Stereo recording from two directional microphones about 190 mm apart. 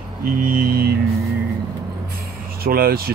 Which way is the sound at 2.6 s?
50° right (ahead or behind).